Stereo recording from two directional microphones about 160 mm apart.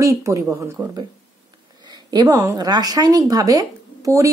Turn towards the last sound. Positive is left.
turn(degrees=-20)  # may be behind; listen again after turning